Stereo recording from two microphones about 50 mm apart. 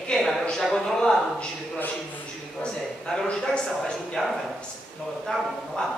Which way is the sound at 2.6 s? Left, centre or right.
Centre.